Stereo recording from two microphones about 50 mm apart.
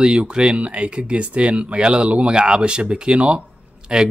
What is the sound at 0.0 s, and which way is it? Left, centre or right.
Speech, centre.